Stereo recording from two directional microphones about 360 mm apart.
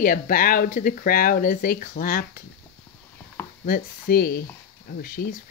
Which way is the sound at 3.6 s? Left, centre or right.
Left.